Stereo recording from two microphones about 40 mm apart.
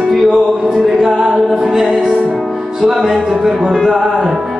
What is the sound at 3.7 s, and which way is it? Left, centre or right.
Music, centre.